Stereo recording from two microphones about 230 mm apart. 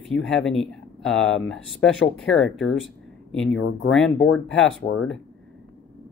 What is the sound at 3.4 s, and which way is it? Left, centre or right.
Speech, left.